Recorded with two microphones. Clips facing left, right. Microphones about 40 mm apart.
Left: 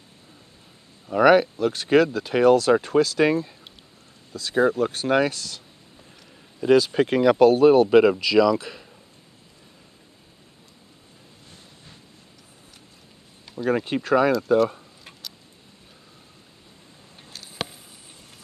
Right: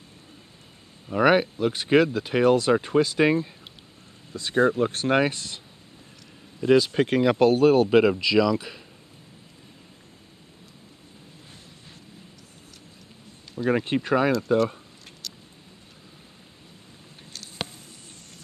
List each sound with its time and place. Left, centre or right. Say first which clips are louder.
1.0 s speech: left 4 dB; centre; by 5.6 s right
6.6 s speech: left 2 dB; centre
13.6 s speech: even; centre
14.3 s speech: left 3 dB; centre
15.2 s a sound: right 1 dB; centre
17.3 s a sound: left 2 dB; centre